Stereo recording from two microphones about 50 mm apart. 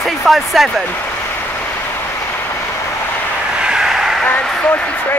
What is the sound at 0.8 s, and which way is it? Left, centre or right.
Speech, left.